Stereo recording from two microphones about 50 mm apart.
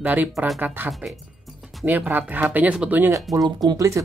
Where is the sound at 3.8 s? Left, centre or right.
Right.